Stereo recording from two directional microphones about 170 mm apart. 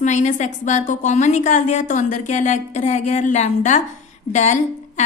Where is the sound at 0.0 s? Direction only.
45° left (ahead or behind).